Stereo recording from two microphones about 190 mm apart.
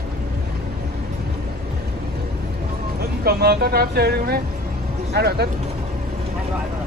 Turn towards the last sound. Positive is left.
turn(degrees=-55)  # may be behind; listen again after turning